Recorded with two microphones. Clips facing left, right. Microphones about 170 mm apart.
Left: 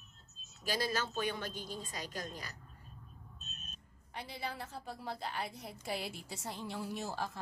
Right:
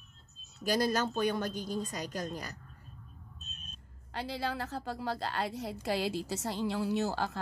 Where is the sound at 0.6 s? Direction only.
50° right (ahead or behind).